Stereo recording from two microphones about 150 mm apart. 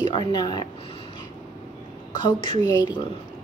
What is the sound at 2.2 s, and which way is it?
Speech, 35° left (ahead or behind).